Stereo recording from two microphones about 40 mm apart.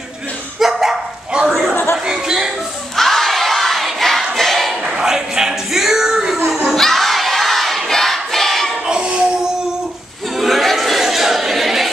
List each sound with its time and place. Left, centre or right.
0.6 s dog: centre
1.5 s chatter: centre
2.0 s a sound: centre
3.0 s crowd: centre
4.4 s a sound: centre
4.8 s music: centre
6.7 s crowd: centre
8.8 s music: right
10.3 s a sound: centre